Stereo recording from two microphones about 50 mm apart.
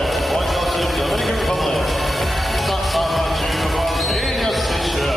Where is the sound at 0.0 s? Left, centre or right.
Centre.